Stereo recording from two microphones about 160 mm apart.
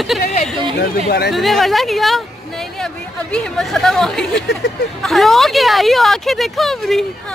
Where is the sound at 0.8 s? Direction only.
85° left.